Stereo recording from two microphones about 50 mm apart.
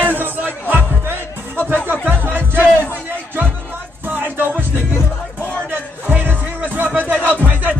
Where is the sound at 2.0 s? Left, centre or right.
Right.